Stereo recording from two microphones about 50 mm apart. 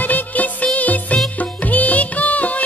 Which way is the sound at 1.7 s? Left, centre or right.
Left.